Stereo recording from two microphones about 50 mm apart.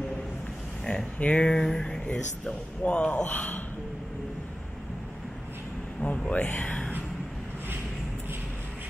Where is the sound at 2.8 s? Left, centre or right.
Left.